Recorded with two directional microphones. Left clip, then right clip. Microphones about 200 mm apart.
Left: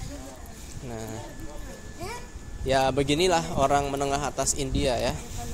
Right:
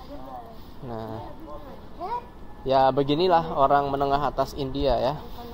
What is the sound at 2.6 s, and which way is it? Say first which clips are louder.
A man's voice: right 3 dB; 20° left (ahead or behind).